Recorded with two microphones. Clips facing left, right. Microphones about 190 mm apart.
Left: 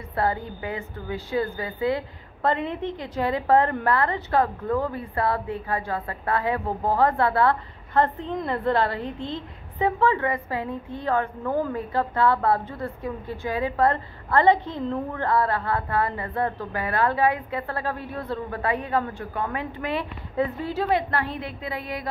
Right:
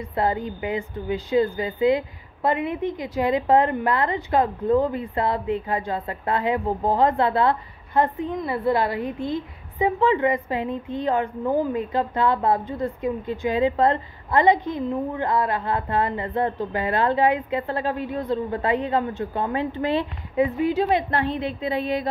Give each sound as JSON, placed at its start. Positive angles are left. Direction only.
{"t": 0.1, "sound": "a woman's voice", "side_deg": -20}
{"t": 20.3, "sound": "a woman's voice", "side_deg": -15}